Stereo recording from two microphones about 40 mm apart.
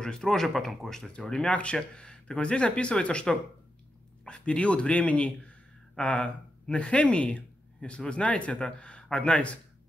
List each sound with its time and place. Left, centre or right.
0.0 s speech: centre
1.5 s a man's voice: left